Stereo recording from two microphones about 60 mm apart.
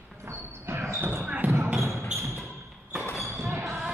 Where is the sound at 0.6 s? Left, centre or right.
Right.